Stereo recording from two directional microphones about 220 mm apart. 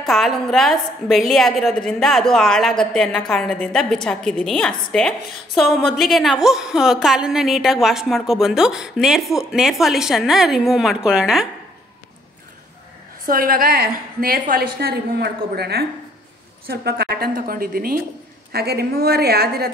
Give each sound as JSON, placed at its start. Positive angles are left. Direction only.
{"t": 0.0, "sound": "a woman's voice", "side_deg": 0}
{"t": 13.3, "sound": "a woman's voice", "side_deg": -40}